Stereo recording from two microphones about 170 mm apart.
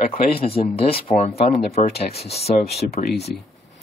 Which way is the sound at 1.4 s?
65° left (ahead or behind).